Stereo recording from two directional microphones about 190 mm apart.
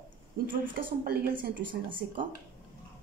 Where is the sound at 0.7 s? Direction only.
50° right (ahead or behind).